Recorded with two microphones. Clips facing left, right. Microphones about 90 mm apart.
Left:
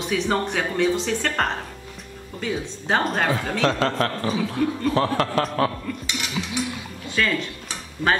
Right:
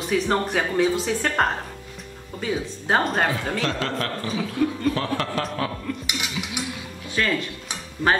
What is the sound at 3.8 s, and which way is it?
Speech, 35° left (ahead or behind).